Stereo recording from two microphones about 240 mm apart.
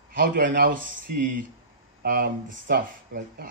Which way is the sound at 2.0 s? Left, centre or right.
Right.